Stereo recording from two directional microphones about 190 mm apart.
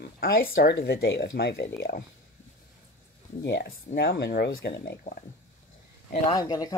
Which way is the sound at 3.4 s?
60° left (ahead or behind).